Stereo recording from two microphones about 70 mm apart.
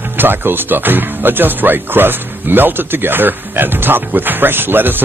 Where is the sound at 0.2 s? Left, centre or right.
Right.